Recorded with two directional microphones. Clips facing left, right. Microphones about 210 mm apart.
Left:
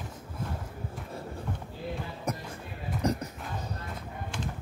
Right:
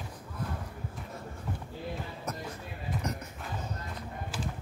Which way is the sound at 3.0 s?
35° left (ahead or behind).